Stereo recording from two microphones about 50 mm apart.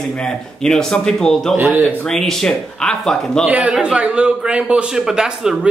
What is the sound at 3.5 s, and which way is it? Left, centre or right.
A man's voice, right.